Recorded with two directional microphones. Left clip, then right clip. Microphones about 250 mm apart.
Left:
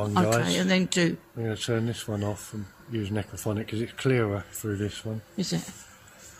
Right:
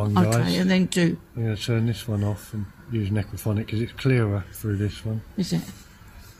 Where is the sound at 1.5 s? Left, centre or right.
Centre.